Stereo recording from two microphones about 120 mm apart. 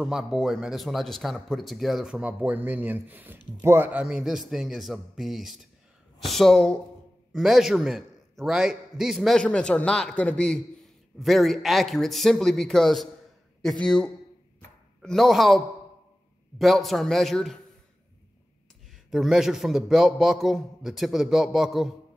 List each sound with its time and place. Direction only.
0.0 s speech: 5° right (ahead or behind)
19.0 s speech: centre (ahead or behind)